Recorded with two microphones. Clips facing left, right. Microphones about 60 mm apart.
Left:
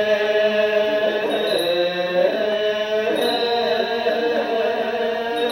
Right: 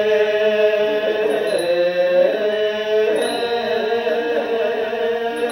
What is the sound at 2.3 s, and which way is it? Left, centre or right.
Carnatic music, centre.